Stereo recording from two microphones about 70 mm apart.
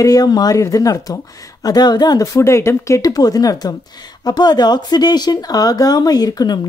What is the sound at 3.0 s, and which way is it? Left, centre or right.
Speech, left.